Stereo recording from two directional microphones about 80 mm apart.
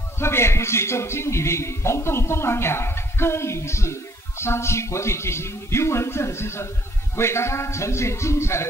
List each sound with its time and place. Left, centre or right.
0.2 s a man's voice: left